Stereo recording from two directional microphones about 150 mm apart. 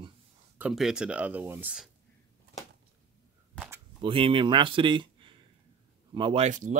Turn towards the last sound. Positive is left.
turn(degrees=-55)  # may be behind; listen again after turning